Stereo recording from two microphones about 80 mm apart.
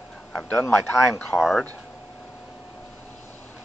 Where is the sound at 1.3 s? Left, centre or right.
Centre.